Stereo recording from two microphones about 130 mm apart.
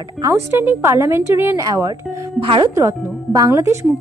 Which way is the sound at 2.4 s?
40° right (ahead or behind).